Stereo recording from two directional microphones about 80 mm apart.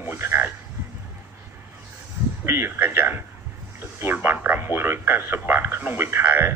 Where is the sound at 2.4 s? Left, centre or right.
Right.